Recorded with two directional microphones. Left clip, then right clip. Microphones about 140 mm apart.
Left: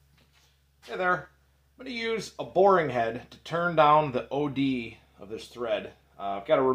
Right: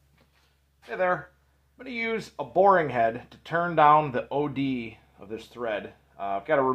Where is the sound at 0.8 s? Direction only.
25° right (ahead or behind).